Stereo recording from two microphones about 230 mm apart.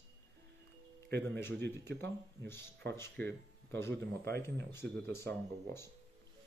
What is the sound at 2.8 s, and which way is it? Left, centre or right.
Speech, right.